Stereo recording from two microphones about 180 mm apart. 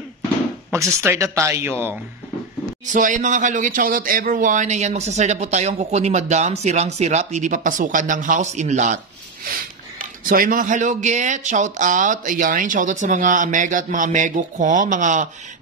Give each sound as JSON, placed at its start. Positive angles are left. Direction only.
{"t": 0.7, "sound": "speech", "side_deg": -15}
{"t": 2.9, "sound": "speech", "side_deg": -45}